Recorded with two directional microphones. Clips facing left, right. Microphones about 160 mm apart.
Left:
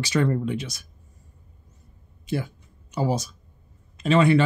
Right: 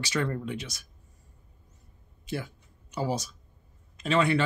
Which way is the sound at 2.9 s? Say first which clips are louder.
Left 5 dB; 30° left (ahead or behind).